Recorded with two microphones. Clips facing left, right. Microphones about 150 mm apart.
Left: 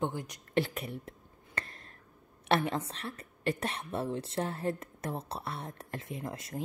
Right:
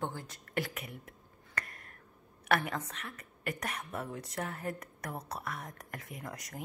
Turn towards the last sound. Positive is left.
turn(degrees=25)  # may be behind; listen again after turning